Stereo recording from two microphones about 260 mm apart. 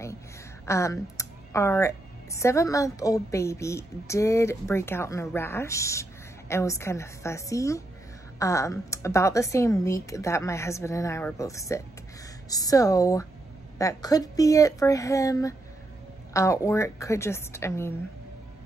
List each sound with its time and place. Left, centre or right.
0.7 s a woman's voice: centre